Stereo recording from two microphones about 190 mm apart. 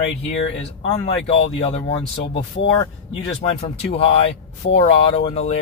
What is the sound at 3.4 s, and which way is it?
Speech, 30° left (ahead or behind).